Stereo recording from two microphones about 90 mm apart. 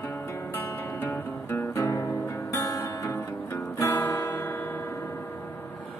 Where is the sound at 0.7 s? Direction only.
25° left (ahead or behind).